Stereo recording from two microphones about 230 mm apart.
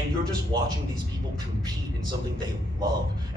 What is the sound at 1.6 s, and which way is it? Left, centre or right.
A man's voice, centre.